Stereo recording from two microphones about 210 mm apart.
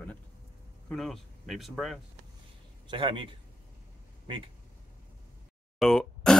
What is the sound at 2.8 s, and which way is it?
A man's voice, 25° right (ahead or behind).